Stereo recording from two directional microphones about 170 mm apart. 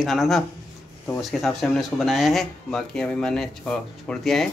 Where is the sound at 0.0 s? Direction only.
Centre (ahead or behind).